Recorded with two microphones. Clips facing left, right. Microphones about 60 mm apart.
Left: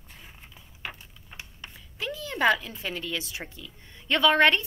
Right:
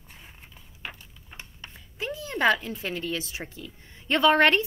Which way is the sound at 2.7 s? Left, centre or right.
Right.